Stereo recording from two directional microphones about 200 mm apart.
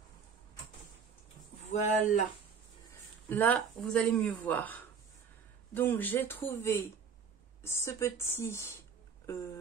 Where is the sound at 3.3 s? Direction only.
10° left (ahead or behind).